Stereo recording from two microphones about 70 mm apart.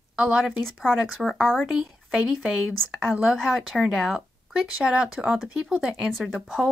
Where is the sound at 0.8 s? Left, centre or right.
Centre.